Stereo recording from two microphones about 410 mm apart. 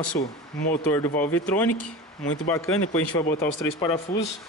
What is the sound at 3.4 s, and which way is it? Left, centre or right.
Speech, centre.